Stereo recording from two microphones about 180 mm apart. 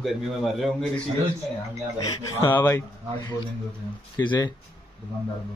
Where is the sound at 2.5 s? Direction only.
10° left (ahead or behind).